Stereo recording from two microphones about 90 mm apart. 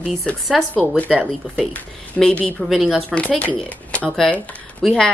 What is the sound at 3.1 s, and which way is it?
Speech, 15° left (ahead or behind).